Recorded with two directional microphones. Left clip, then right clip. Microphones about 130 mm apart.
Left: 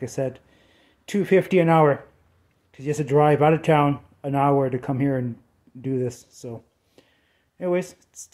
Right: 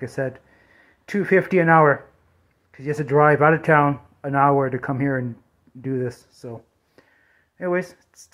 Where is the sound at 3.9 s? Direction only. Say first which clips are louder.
Right 2 dB; 30° left (ahead or behind).